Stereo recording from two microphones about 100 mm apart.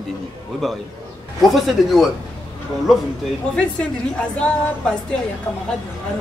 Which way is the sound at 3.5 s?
10° left (ahead or behind).